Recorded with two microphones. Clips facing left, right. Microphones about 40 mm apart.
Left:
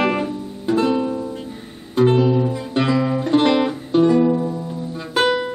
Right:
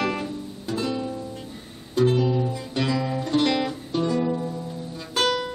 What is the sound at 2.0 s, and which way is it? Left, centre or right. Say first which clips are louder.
Guitar: left 5 dB; left.